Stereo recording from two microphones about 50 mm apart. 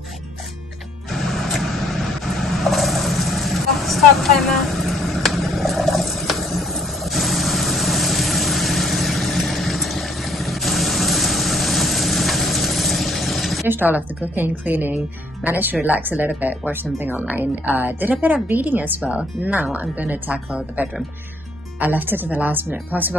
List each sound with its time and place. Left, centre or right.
1.1 s vehicle: centre
13.7 s a woman's voice: right